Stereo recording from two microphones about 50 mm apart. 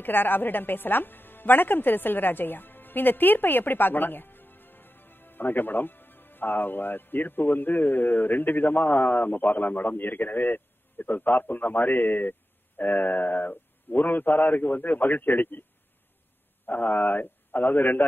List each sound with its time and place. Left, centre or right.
0.0 s speech: left
16.6 s speech: left